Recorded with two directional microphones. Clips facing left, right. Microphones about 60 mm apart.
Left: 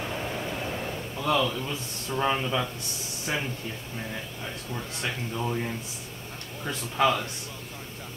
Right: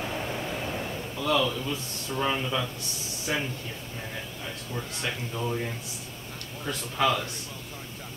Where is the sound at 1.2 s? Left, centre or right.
Centre.